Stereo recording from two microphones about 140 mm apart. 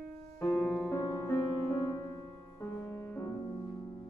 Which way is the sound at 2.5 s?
15° left (ahead or behind).